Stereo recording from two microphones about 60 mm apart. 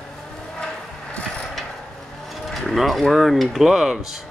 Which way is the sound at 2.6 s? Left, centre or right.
Centre.